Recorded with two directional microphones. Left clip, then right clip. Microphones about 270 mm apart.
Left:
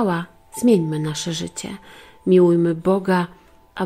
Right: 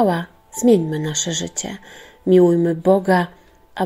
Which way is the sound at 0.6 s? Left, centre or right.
Centre.